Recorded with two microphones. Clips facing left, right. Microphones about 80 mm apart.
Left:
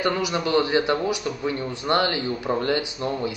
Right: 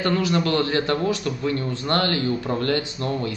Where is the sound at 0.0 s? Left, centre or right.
Centre.